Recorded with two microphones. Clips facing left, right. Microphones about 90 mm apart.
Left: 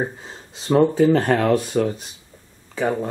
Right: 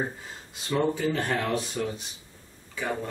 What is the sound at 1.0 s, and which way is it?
Speech, 55° left (ahead or behind).